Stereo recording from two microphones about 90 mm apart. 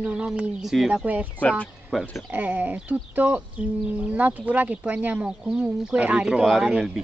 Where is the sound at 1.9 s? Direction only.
5° right (ahead or behind).